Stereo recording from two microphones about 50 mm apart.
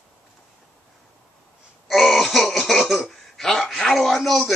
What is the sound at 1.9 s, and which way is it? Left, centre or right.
Throat clearing, centre.